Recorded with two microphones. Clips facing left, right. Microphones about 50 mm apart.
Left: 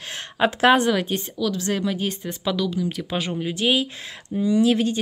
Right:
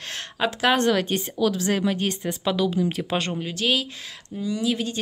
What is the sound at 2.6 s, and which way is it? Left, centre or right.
Speech, centre.